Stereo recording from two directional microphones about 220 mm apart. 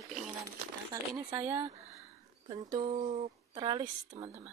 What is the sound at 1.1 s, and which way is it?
A woman's voice, 15° right (ahead or behind).